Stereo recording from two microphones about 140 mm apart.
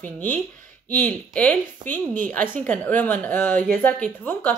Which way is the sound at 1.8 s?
30° right (ahead or behind).